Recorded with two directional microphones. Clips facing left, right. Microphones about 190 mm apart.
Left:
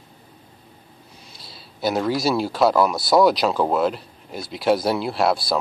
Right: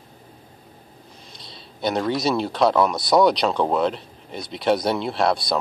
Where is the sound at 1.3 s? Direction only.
5° left (ahead or behind).